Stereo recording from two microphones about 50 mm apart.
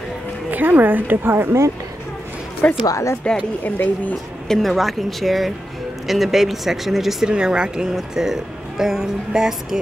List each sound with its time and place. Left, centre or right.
0.5 s a woman's voice: right
2.6 s speech: left
3.6 s a woman's voice: left
4.5 s speech: centre
7.2 s speech: centre